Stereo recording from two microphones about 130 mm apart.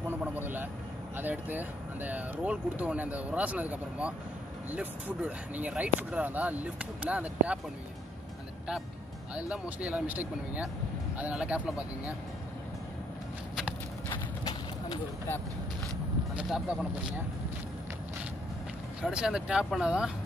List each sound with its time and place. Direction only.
0.1 s vehicle: 15° right (ahead or behind)
1.1 s speech: 15° right (ahead or behind)
9.5 s speech: 10° right (ahead or behind)
16.3 s speech: 5° right (ahead or behind)
18.9 s speech: 5° right (ahead or behind)